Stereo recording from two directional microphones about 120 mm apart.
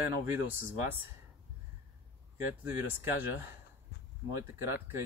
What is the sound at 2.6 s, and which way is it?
Speech, 20° right (ahead or behind).